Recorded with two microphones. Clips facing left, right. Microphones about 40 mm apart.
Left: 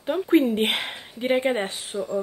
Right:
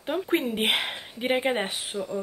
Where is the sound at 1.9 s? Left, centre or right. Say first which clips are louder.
Left 4 dB; left.